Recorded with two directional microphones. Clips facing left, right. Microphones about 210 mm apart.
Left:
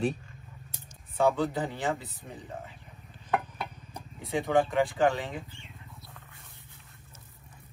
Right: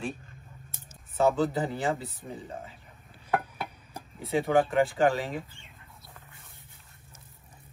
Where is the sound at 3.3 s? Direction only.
5° right (ahead or behind).